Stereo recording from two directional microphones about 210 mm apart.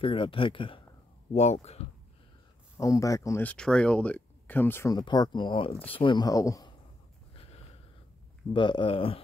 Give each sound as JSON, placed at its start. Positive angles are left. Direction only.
{"t": 0.0, "sound": "speech", "side_deg": 25}
{"t": 2.8, "sound": "speech", "side_deg": 15}
{"t": 8.5, "sound": "speech", "side_deg": 20}